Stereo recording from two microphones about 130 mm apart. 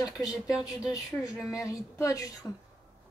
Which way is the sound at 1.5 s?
25° left (ahead or behind).